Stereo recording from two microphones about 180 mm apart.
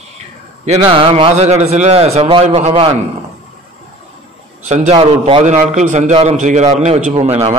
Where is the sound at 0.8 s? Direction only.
30° right (ahead or behind).